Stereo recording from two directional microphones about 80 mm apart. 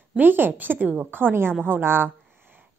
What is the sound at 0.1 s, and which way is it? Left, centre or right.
A woman's voice, right.